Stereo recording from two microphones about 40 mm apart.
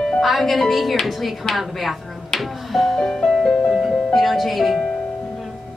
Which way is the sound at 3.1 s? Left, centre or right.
Left.